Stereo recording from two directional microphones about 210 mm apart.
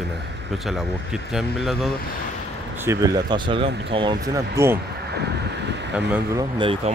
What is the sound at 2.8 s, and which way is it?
Speech, 15° right (ahead or behind).